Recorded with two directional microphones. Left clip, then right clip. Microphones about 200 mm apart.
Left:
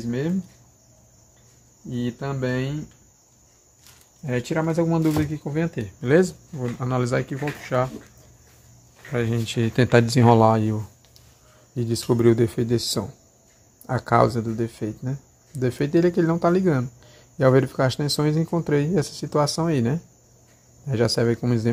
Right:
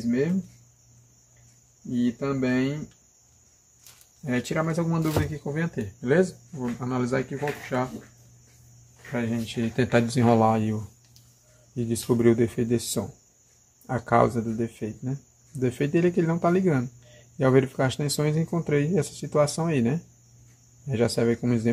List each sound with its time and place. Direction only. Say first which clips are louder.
2.0 s speech: right 2 dB; 25° left (ahead or behind)
4.3 s speech: left 3 dB; 30° left (ahead or behind); by 7.9 s 50° left (ahead or behind)
9.1 s speech: left 4 dB; 55° left (ahead or behind); by 21.6 s 25° left (ahead or behind)